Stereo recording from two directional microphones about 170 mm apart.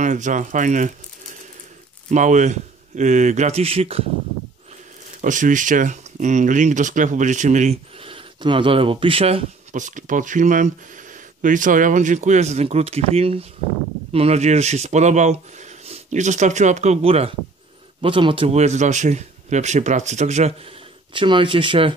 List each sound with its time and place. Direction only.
0.0 s speech: 45° right (ahead or behind)
2.0 s speech: 45° right (ahead or behind)
5.2 s speech: 50° right (ahead or behind)
21.1 s speech: 30° right (ahead or behind)